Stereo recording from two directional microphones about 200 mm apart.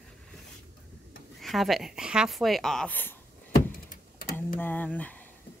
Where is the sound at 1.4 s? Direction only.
Centre (ahead or behind).